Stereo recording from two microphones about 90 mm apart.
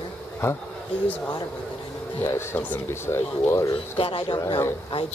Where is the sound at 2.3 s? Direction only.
25° left (ahead or behind).